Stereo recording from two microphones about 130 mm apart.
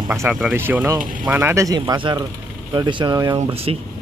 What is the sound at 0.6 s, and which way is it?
Speech, 15° right (ahead or behind).